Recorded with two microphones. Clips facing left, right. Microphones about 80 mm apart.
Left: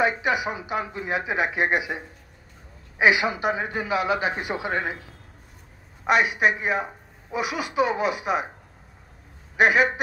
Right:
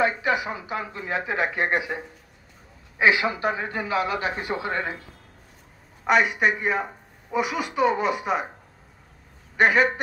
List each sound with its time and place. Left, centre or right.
0.0 s a man's voice: centre
3.0 s a man's voice: centre
6.0 s speech: centre
9.6 s a man's voice: centre